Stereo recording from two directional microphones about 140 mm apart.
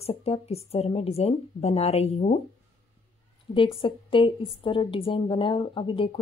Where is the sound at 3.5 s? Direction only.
40° left (ahead or behind).